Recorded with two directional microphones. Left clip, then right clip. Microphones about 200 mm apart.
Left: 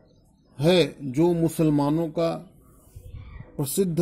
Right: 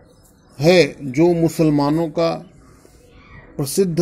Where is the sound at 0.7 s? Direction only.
20° left (ahead or behind).